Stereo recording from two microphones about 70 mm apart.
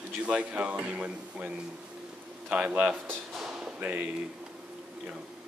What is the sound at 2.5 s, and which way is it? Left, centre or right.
Speech, centre.